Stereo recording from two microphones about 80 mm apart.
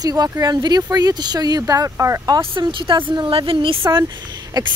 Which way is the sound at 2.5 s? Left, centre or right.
Right.